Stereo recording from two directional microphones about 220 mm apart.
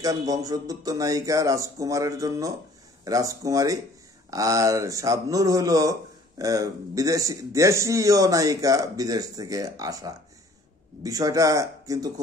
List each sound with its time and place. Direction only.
0.0 s speech: 15° right (ahead or behind)